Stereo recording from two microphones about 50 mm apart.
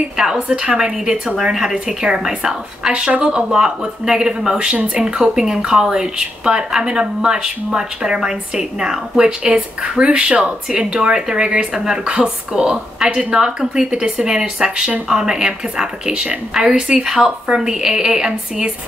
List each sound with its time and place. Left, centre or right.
0.5 s speech: centre